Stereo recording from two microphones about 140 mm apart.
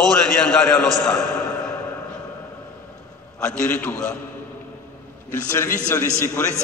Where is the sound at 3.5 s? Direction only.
5° left (ahead or behind).